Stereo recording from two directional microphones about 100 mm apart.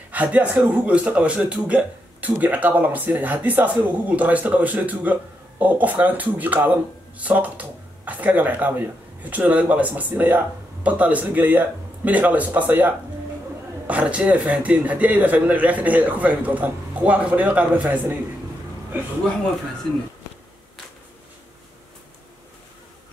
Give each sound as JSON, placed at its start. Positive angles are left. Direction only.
{"t": 0.1, "sound": "speech", "side_deg": -15}